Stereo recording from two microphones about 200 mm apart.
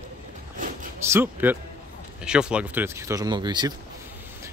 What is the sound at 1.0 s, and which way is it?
Speech, 10° right (ahead or behind).